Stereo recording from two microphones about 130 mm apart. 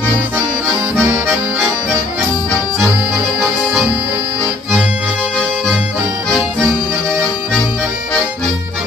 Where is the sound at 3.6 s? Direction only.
15° right (ahead or behind).